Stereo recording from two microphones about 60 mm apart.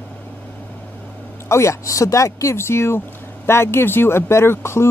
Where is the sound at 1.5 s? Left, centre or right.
Left.